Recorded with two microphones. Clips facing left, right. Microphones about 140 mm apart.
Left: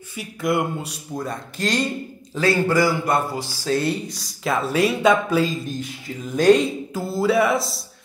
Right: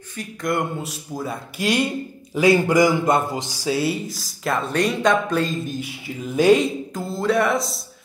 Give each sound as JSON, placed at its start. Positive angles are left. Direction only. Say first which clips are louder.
{"t": 0.1, "sound": "a man's voice", "louder": "left 2 dB", "side_deg": 5}
{"t": 3.7, "sound": "speech", "louder": "left 2 dB", "side_deg": -5}